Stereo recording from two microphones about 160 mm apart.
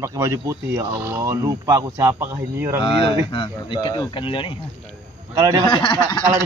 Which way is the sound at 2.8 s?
35° left (ahead or behind).